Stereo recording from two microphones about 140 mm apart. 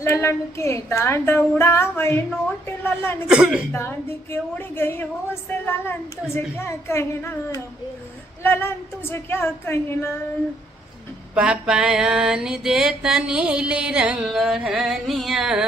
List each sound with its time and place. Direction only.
0.0 s a woman's voice: 20° left (ahead or behind)
3.3 s mantra: 5° right (ahead or behind)
3.7 s a woman's voice: 20° left (ahead or behind)
11.3 s mantra: 5° right (ahead or behind)